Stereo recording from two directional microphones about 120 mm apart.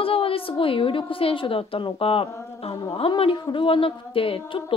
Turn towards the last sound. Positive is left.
turn(degrees=50)  # may be behind; listen again after turning